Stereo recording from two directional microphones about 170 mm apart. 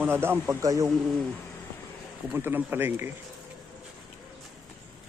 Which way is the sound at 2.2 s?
10° right (ahead or behind).